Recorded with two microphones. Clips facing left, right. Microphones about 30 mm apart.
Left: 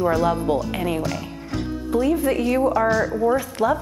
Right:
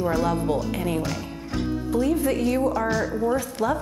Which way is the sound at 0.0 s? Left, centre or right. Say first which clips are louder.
Left 3 dB; centre.